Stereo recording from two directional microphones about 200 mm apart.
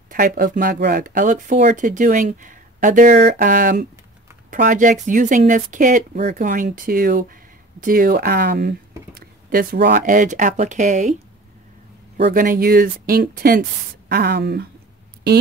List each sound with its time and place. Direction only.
0.1 s speech: 45° right (ahead or behind)
12.2 s speech: 45° right (ahead or behind)